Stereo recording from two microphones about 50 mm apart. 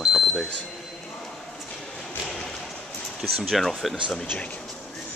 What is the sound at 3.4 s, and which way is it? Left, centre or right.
Speech, centre.